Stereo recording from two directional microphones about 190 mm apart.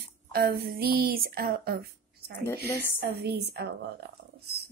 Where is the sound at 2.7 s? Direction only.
10° left (ahead or behind).